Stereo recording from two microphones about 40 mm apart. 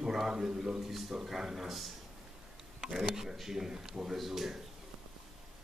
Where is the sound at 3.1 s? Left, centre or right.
Centre.